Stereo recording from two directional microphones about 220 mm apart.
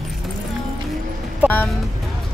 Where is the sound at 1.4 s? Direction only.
10° left (ahead or behind).